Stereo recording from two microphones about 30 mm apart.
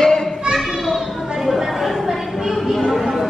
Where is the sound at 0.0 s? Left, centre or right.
Left.